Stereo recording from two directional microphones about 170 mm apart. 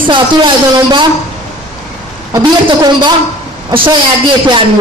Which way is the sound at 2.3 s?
25° right (ahead or behind).